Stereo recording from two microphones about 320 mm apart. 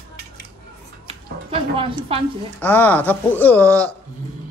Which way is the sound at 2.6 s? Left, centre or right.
Centre.